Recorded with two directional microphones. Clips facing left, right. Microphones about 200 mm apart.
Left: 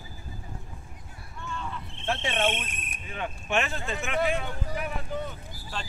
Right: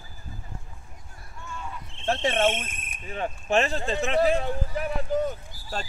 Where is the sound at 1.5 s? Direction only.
10° right (ahead or behind).